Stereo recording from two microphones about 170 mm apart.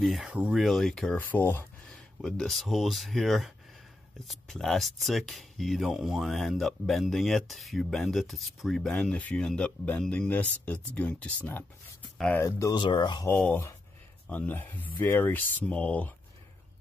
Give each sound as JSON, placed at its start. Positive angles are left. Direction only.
{"t": 0.0, "sound": "speech", "side_deg": 0}
{"t": 13.3, "sound": "speech", "side_deg": 10}